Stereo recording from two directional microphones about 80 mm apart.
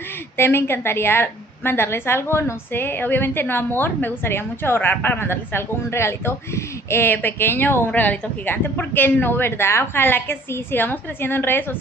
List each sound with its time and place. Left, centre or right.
0.4 s a woman's voice: left